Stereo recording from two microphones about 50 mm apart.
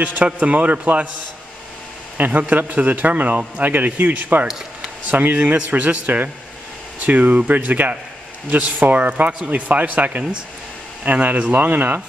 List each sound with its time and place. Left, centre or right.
0.0 s a man's voice: right
2.1 s a man's voice: right